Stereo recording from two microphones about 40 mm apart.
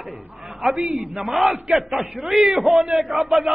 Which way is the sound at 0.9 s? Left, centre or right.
Right.